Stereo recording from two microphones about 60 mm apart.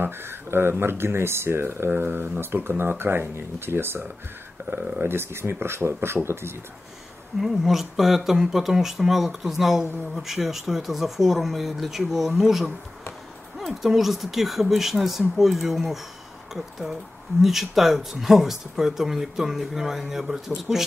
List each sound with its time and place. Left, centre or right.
0.0 s speech: right
5.0 s speech: right
7.3 s speech: centre
17.4 s speech: centre